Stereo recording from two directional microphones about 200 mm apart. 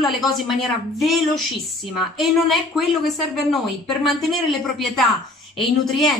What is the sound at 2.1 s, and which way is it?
A woman's voice, centre (ahead or behind).